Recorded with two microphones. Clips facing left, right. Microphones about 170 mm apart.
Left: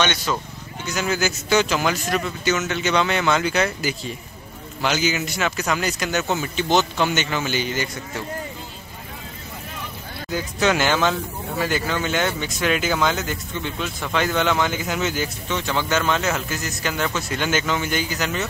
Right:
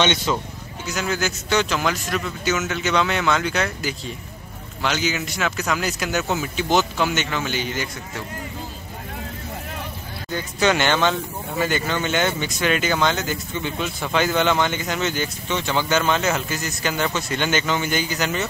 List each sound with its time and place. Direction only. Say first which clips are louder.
0.0 s speech: right 2 dB; 20° right (ahead or behind)
0.8 s speech: left 1 dB; centre (ahead or behind)
10.3 s speech: even; centre (ahead or behind)